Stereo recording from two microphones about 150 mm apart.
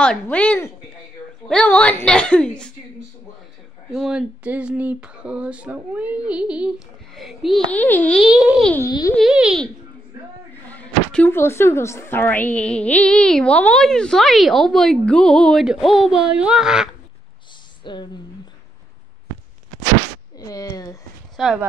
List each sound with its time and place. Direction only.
0.0 s a woman's voice: 5° left (ahead or behind)
3.9 s a woman's voice: centre (ahead or behind)
7.7 s a woman's voice: 10° left (ahead or behind)
8.2 s a woman's voice: 5° right (ahead or behind)
8.8 s speech: 25° left (ahead or behind)
9.1 s a woman's voice: 5° right (ahead or behind)
10.7 s a woman's voice: 10° left (ahead or behind); by 16.9 s 5° right (ahead or behind)
17.8 s speech: 30° left (ahead or behind)
20.3 s speech: 25° left (ahead or behind)
21.4 s a woman's voice: centre (ahead or behind)